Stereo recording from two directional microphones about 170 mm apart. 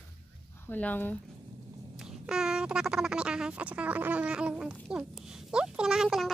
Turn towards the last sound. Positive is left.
turn(degrees=0)  # may be behind; listen again after turning